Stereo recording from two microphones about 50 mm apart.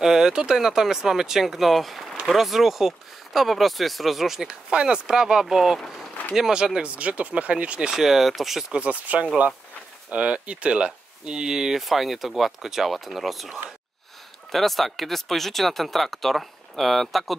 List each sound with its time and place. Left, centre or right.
0.0 s speech: centre
4.5 s speech: centre
7.9 s speech: centre
8.7 s speech: right; by 17.4 s centre